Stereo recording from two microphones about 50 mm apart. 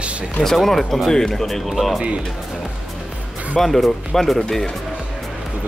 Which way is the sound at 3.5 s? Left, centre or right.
Centre.